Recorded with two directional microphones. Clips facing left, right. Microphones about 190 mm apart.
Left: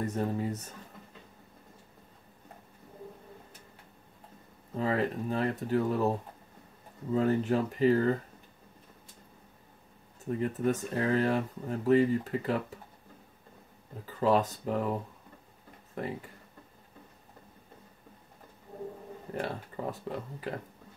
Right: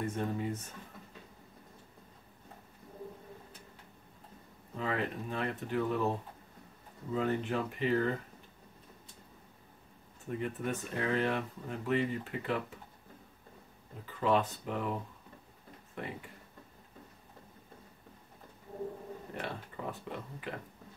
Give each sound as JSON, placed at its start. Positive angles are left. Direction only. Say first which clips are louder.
{"t": 0.0, "sound": "speech", "louder": "left 3 dB", "side_deg": 40}
{"t": 4.7, "sound": "speech", "louder": "left 5 dB", "side_deg": 35}
{"t": 7.2, "sound": "speech", "louder": "left 5 dB", "side_deg": 40}
{"t": 10.4, "sound": "speech", "louder": "left 7 dB", "side_deg": 40}
{"t": 14.2, "sound": "speech", "louder": "left 4 dB", "side_deg": 40}
{"t": 16.0, "sound": "speech", "louder": "left 5 dB", "side_deg": 40}
{"t": 19.3, "sound": "speech", "louder": "left 7 dB", "side_deg": 40}